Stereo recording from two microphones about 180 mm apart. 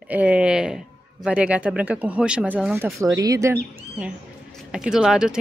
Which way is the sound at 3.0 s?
20° right (ahead or behind).